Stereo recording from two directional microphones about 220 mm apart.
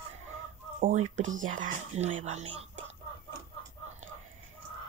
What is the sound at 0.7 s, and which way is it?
Speech, 35° right (ahead or behind).